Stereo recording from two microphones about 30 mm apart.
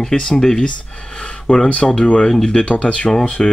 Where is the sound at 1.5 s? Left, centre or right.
Left.